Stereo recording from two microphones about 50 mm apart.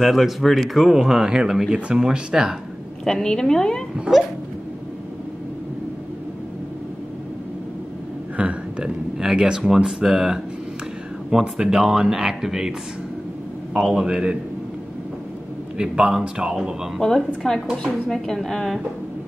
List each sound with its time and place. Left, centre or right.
0.0 s speech: centre
3.1 s speech: centre
8.4 s a sound: right
9.2 s speech: centre
13.7 s speech: centre
15.8 s speech: centre
17.0 s speech: centre